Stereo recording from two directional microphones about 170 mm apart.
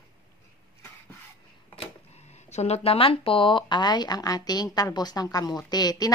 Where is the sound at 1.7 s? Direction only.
40° left (ahead or behind).